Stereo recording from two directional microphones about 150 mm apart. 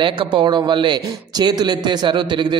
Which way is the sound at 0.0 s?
35° right (ahead or behind).